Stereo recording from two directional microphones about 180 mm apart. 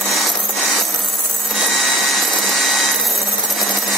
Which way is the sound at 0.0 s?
Centre (ahead or behind).